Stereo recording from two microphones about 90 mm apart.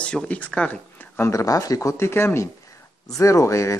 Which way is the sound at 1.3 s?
40° left (ahead or behind).